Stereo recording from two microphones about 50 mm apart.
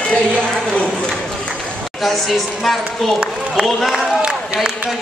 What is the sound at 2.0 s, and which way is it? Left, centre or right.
Speech, centre.